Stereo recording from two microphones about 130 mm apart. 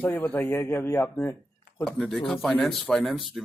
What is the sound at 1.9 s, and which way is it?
Speech, 5° left (ahead or behind).